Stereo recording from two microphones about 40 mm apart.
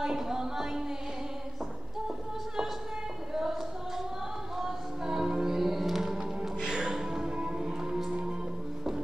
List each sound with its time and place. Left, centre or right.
0.0 s speech: centre
4.6 s music: centre
6.1 s music: centre